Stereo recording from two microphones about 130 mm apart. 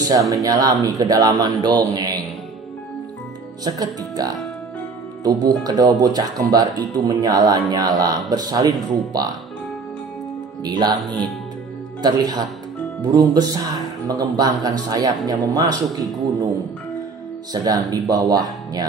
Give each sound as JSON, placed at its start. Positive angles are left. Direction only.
{"t": 0.3, "sound": "speech", "side_deg": -25}
{"t": 3.6, "sound": "speech", "side_deg": -30}
{"t": 10.6, "sound": "speech", "side_deg": -30}
{"t": 12.0, "sound": "speech", "side_deg": -30}
{"t": 17.5, "sound": "speech", "side_deg": -30}